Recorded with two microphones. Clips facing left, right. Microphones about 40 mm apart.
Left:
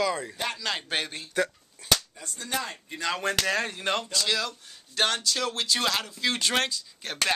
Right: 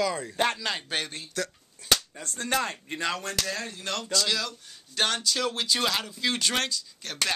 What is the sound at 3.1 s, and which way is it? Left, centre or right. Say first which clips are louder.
Speech: left 4 dB; left.